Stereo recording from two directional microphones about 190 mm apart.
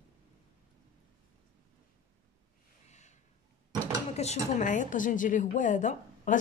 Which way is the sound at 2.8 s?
35° left (ahead or behind).